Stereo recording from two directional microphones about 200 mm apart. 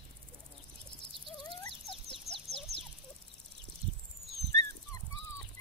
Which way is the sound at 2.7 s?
30° right (ahead or behind).